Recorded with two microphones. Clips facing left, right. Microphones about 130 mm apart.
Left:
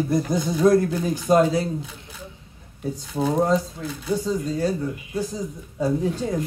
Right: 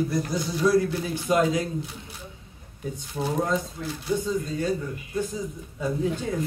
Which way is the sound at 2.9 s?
35° left (ahead or behind).